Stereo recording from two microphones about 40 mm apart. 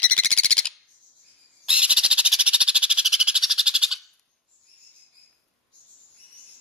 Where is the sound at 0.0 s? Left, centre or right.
Left.